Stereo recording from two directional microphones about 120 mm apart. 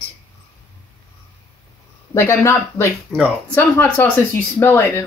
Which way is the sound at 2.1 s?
20° left (ahead or behind).